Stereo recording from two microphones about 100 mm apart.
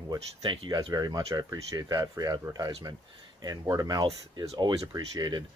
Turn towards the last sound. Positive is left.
turn(degrees=-45)  # may be behind; listen again after turning